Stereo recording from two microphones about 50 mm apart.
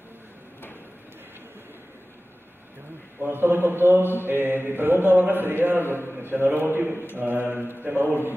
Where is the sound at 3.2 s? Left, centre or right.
Right.